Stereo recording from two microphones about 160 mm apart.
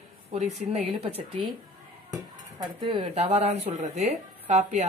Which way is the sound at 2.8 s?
40° right (ahead or behind).